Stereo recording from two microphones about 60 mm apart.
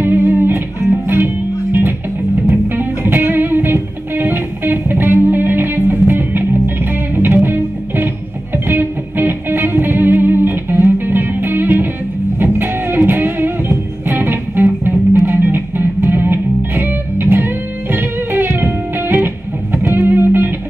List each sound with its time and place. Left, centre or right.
0.0 s music: right